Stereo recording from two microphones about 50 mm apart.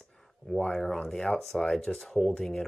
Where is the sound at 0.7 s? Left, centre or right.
Centre.